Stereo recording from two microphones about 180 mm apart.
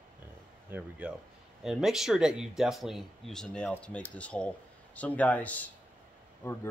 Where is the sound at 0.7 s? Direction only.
5° right (ahead or behind).